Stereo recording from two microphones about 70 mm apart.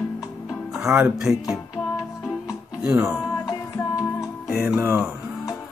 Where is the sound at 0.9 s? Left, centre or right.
Centre.